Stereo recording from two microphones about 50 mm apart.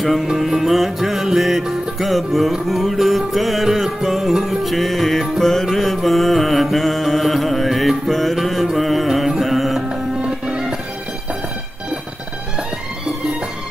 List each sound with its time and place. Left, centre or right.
0.0 s music: centre
5.9 s mantra: centre
8.7 s music: centre
9.8 s music: centre